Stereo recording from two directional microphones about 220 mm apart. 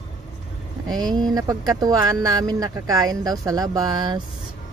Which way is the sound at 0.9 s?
20° right (ahead or behind).